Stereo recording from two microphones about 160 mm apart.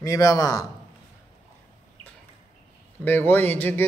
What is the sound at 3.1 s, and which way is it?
Speech, 10° left (ahead or behind).